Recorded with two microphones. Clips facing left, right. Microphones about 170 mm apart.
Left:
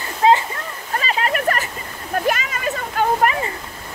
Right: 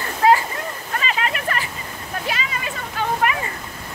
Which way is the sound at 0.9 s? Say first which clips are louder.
Left 4 dB; 35° left (ahead or behind).